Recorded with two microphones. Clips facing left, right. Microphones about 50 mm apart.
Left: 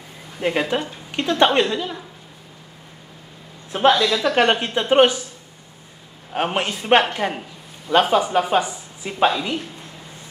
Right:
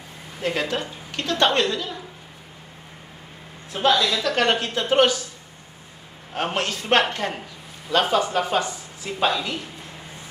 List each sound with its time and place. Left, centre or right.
0.4 s a woman's voice: centre
3.7 s a woman's voice: left
6.3 s speech: centre